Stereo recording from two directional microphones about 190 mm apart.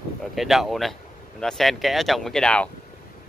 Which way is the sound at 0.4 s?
Centre (ahead or behind).